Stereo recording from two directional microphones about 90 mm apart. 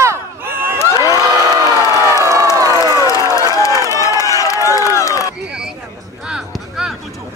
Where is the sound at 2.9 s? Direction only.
35° left (ahead or behind).